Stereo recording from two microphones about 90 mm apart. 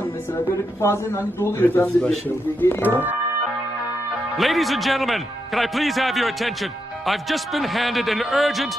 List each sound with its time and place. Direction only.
0.5 s a man's voice: 30° left (ahead or behind)
4.4 s speech: centre (ahead or behind)